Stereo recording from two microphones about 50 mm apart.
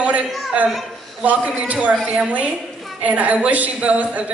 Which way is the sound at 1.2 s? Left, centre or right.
Right.